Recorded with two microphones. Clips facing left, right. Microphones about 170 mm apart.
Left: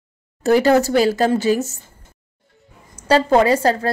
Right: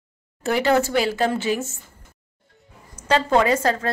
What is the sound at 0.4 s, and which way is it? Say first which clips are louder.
A woman's voice: left 5 dB; 40° left (ahead or behind).